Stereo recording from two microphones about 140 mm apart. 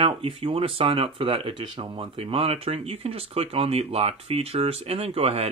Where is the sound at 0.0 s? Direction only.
40° right (ahead or behind).